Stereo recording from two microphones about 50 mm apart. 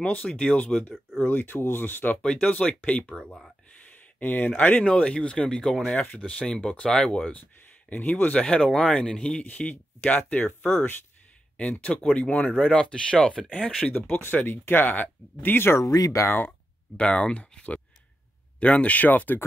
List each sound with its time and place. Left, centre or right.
0.0 s speech: left
1.2 s speech: left
2.6 s speech: left
3.8 s speech: left; by 6.7 s centre
7.9 s speech: left; by 9.4 s centre
9.4 s speech: left
11.5 s speech: left
13.9 s speech: left
15.8 s speech: left
16.3 s speech: left
16.9 s speech: left